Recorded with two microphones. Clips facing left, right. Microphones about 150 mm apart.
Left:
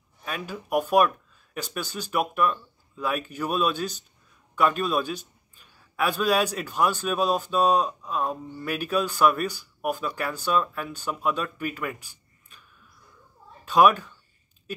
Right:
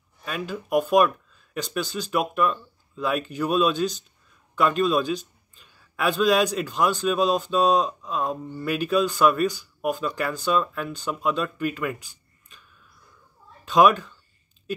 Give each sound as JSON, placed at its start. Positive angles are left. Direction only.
{"t": 0.2, "sound": "a man's voice", "side_deg": 5}
{"t": 13.7, "sound": "a man's voice", "side_deg": 5}